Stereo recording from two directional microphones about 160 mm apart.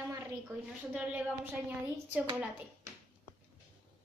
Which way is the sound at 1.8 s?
10° right (ahead or behind).